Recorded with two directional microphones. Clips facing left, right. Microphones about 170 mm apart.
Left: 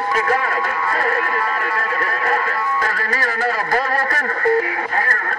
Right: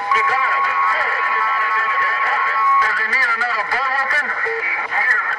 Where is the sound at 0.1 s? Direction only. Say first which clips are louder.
Even; 45° left (ahead or behind).